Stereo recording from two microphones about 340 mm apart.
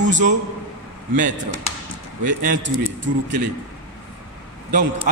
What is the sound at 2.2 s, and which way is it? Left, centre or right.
Speech, right.